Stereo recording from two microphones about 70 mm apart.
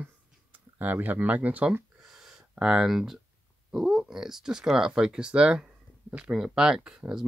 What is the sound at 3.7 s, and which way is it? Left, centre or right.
Speech, centre.